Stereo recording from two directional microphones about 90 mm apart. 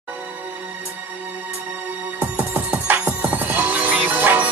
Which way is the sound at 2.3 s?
15° right (ahead or behind).